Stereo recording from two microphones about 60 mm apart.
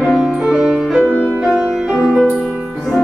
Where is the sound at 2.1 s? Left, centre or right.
Centre.